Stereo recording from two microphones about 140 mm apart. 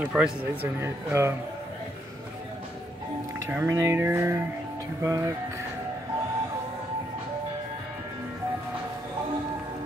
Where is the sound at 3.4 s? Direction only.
20° right (ahead or behind).